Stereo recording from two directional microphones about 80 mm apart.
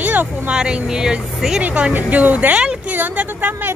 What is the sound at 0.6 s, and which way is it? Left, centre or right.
Speech, centre.